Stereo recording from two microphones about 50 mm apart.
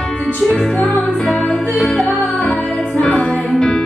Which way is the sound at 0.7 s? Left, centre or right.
Left.